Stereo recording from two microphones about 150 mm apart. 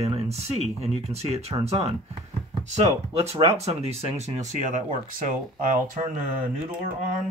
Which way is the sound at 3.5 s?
45° right (ahead or behind).